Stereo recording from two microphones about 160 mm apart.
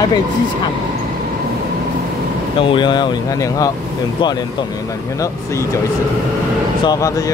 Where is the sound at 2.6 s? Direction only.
30° left (ahead or behind).